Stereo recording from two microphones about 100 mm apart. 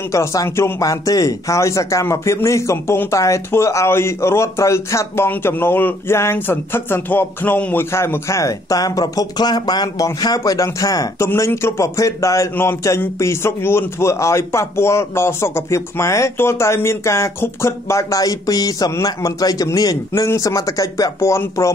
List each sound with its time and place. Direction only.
0.1 s a man's voice: 30° left (ahead or behind)
11.2 s a man's voice: 25° left (ahead or behind)